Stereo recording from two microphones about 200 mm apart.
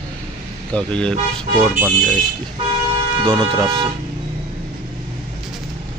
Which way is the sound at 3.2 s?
25° right (ahead or behind).